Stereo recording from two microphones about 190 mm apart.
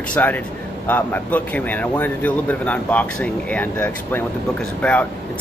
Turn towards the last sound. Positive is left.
turn(degrees=5)  # may be behind; listen again after turning